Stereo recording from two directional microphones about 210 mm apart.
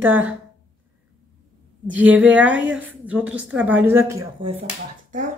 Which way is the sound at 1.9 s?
5° right (ahead or behind).